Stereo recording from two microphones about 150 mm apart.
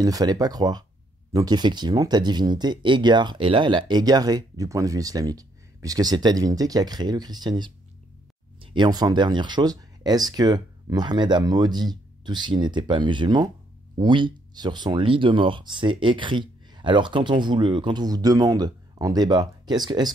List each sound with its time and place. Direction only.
0.0 s speech: 25° right (ahead or behind)